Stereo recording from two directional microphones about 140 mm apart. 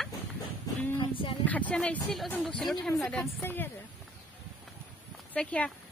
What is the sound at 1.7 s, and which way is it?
A woman's voice, 5° left (ahead or behind).